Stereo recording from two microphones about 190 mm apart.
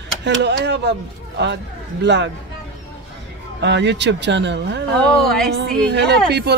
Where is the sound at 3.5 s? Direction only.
65° right (ahead or behind).